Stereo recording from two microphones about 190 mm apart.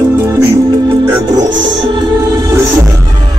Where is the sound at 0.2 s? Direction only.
20° right (ahead or behind).